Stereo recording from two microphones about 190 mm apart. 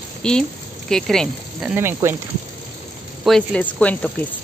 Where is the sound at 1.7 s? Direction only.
10° right (ahead or behind).